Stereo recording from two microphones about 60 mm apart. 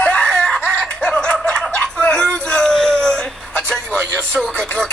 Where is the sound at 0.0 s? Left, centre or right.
Centre.